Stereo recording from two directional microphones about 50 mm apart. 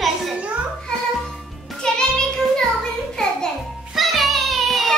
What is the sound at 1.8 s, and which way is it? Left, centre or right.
Music, centre.